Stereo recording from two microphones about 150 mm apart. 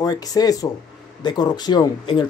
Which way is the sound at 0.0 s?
25° left (ahead or behind).